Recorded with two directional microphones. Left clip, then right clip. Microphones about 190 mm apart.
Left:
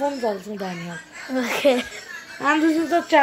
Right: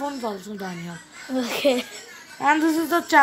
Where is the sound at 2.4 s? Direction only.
30° right (ahead or behind).